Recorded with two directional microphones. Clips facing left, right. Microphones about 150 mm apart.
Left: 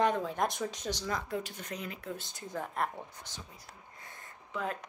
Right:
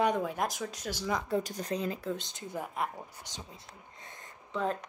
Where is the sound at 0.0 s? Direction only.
10° right (ahead or behind).